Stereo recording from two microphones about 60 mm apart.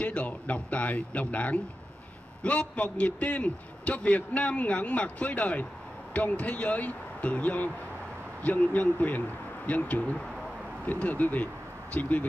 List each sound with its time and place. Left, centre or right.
0.0 s a man's voice: left